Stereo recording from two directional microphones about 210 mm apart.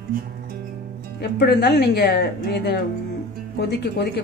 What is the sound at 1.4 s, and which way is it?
A woman's voice, 50° left (ahead or behind).